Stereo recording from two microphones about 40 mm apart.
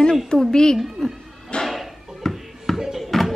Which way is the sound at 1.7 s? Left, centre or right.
Centre.